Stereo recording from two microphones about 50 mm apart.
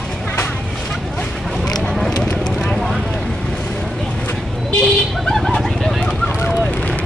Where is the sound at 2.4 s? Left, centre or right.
Centre.